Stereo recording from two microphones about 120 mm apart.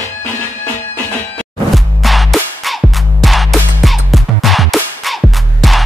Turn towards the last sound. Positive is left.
turn(degrees=0)  # may be behind; listen again after turning